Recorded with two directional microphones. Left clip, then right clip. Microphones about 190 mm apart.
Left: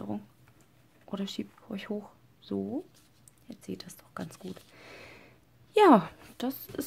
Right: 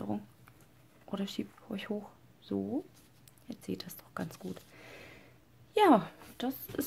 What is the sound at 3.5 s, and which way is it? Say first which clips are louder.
Speech: right 1 dB; centre (ahead or behind).